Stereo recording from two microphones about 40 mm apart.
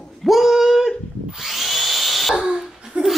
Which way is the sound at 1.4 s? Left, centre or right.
Centre.